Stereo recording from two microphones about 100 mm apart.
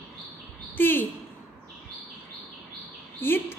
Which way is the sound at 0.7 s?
20° left (ahead or behind).